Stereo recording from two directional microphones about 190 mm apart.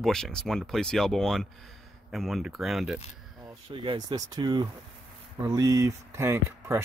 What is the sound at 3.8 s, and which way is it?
Speech, 20° right (ahead or behind).